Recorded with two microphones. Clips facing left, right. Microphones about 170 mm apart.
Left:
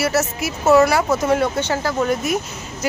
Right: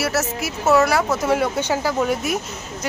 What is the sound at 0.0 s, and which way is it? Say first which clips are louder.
Speech: left 2 dB; centre (ahead or behind).